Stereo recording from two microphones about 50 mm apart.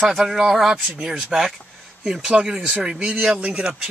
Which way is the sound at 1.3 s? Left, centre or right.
Centre.